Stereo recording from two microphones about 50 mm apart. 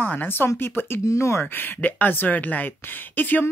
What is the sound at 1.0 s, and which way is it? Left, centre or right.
Speech, left.